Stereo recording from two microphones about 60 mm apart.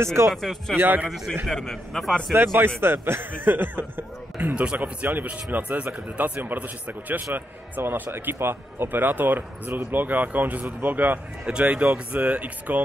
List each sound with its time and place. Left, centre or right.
0.0 s speech: right
0.3 s a man's voice: centre
0.7 s speech: right
1.0 s a man's voice: centre
2.3 s speech: right
4.4 s speech: centre